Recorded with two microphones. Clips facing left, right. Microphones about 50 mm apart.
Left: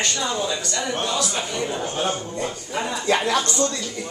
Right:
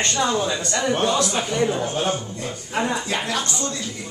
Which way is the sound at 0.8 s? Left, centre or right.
Centre.